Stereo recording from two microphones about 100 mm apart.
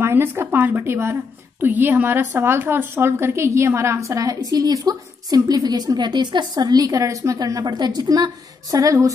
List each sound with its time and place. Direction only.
0.0 s a woman's voice: 20° right (ahead or behind)